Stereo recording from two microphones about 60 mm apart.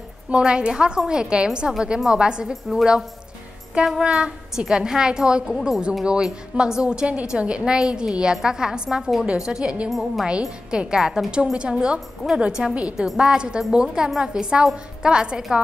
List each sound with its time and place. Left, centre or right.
0.3 s a woman's voice: centre
9.8 s a woman's voice: centre
10.7 s a woman's voice: centre